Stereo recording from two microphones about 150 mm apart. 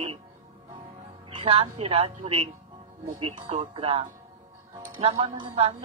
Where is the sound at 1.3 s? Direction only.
40° right (ahead or behind).